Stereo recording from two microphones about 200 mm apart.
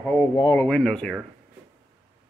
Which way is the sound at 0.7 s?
5° left (ahead or behind).